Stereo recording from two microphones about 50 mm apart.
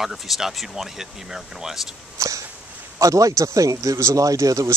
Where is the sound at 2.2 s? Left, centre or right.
Right.